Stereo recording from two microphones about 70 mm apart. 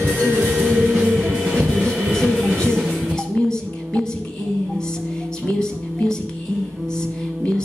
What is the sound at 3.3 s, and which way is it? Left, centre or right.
Music, centre.